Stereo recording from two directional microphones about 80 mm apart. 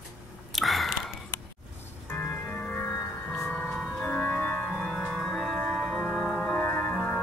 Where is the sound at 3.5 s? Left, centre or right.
Centre.